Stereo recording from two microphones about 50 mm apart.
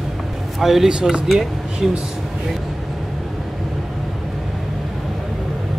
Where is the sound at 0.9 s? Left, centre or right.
Centre.